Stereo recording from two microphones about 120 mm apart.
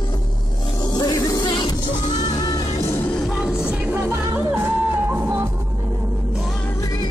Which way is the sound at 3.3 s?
10° right (ahead or behind).